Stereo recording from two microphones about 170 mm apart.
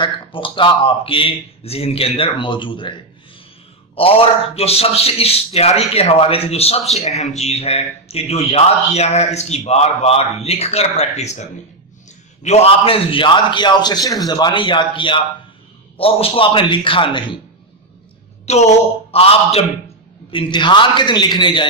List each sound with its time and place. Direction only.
0.0 s speech: 30° left (ahead or behind)
3.9 s a man's voice: 35° left (ahead or behind)
12.4 s a man's voice: 35° left (ahead or behind)
18.4 s a sound: 40° left (ahead or behind)
19.1 s a man's voice: 35° left (ahead or behind)